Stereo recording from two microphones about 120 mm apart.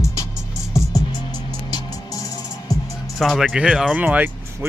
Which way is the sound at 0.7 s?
30° left (ahead or behind).